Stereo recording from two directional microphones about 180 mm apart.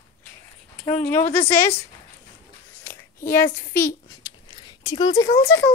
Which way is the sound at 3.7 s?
15° left (ahead or behind).